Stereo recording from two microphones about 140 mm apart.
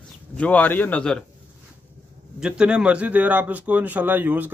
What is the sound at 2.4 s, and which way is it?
A man's voice, 5° right (ahead or behind).